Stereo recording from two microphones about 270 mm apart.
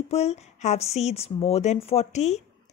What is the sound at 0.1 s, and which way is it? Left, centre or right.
Speech, left.